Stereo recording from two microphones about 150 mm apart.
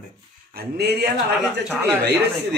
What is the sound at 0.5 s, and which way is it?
Speech, 90° right.